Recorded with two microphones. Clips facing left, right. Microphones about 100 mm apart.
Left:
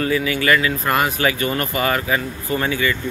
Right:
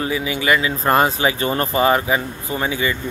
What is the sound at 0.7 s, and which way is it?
Speech, 30° right (ahead or behind).